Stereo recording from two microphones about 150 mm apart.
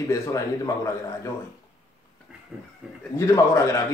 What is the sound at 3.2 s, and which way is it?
Speech, 20° left (ahead or behind).